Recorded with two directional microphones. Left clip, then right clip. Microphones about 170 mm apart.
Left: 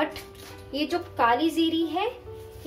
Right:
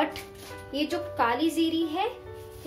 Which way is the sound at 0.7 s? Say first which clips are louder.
Left 1 dB; centre (ahead or behind).